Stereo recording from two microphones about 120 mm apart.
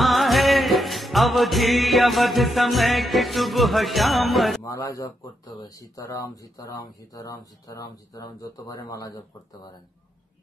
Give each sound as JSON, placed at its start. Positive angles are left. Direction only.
{"t": 0.0, "sound": "music", "side_deg": 0}
{"t": 4.6, "sound": "speech", "side_deg": 25}